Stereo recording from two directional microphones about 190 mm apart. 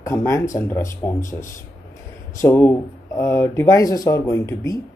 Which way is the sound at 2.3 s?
10° left (ahead or behind).